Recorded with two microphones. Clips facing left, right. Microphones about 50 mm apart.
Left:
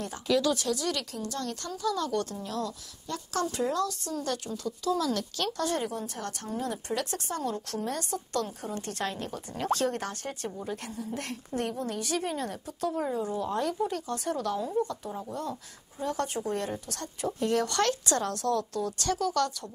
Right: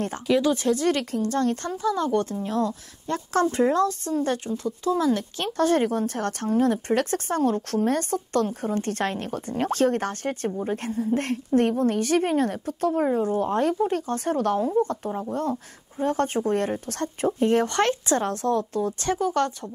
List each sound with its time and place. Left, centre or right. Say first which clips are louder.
0.3 s a woman's voice: right 5 dB; right
15.0 s a woman's voice: right 8 dB; right